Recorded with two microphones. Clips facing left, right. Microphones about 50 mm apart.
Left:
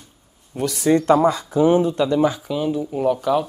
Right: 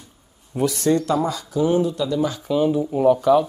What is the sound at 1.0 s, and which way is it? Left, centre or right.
Speech, left.